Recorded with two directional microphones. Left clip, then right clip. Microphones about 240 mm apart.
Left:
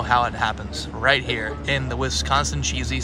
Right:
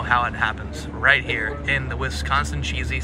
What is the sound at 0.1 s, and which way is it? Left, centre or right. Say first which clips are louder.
Speech: even; centre.